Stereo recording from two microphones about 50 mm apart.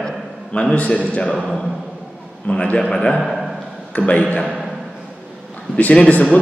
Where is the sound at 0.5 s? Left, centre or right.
Left.